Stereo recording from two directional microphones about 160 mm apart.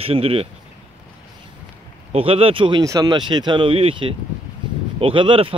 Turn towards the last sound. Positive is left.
turn(degrees=-35)  # may be behind; listen again after turning